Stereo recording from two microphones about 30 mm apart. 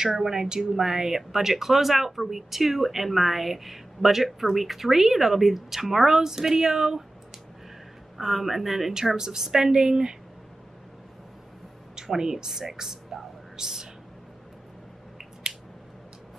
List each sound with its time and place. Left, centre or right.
0.1 s speech: centre
8.2 s speech: centre
9.1 s speech: centre
12.2 s speech: right
12.7 s a sound: centre